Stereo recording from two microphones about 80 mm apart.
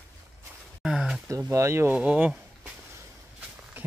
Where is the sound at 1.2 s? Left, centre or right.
Right.